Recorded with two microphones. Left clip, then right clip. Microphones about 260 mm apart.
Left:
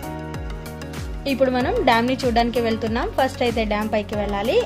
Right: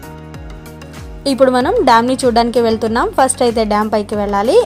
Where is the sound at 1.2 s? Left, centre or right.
Right.